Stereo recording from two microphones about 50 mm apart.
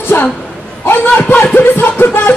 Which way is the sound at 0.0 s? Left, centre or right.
Left.